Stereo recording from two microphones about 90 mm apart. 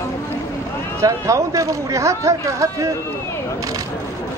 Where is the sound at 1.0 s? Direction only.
35° right (ahead or behind).